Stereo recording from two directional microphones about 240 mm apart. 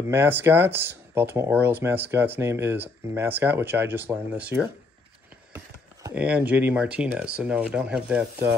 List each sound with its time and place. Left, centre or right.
0.1 s speech: centre
6.0 s speech: centre